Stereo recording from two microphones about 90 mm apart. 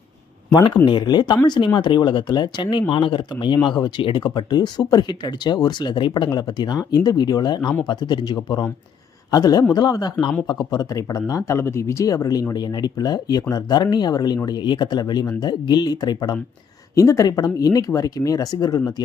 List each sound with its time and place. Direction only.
0.8 s speech: 55° left (ahead or behind)
16.9 s speech: 35° left (ahead or behind)